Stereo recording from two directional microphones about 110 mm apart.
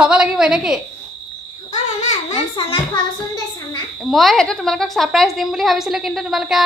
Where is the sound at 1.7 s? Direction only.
90° left.